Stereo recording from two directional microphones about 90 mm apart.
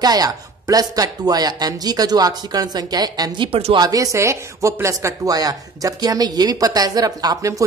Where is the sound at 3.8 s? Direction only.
40° right (ahead or behind).